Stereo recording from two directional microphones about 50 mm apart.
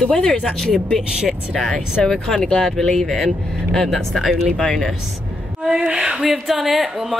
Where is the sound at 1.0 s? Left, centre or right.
Centre.